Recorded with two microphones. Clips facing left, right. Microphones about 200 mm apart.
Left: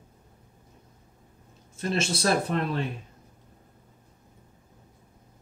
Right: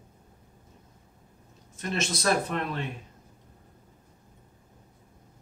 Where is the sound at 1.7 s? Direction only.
30° left (ahead or behind).